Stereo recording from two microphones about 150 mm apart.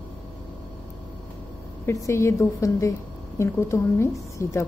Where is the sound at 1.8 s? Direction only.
20° left (ahead or behind).